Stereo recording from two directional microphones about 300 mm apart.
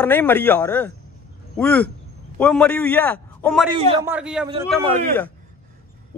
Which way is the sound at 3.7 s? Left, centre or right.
Centre.